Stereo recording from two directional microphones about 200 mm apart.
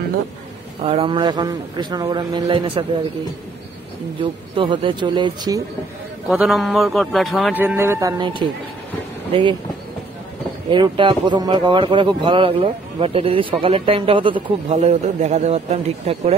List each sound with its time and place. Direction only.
0.8 s a man's voice: 30° right (ahead or behind)
4.2 s a man's voice: 25° right (ahead or behind)
6.2 s a man's voice: centre (ahead or behind)
7.6 s a man's voice: 10° right (ahead or behind)
10.7 s a man's voice: 25° right (ahead or behind)